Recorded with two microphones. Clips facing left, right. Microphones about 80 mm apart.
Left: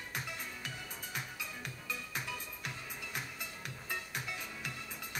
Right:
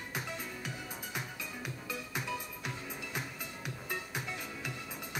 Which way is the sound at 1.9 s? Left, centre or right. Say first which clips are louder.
Right 3 dB; centre.